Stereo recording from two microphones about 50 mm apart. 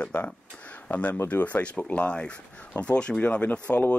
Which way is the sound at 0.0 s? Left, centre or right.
Left.